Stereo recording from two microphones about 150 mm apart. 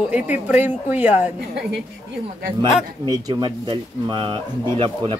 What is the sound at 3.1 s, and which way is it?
Speech, 25° right (ahead or behind).